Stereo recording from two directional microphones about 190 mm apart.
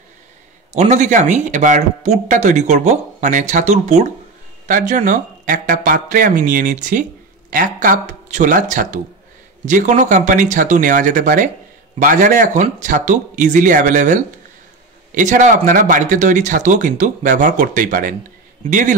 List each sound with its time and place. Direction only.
0.7 s speech: 40° right (ahead or behind)